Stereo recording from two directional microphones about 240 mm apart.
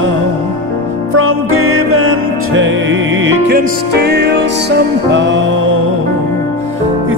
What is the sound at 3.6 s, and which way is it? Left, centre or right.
Music, right.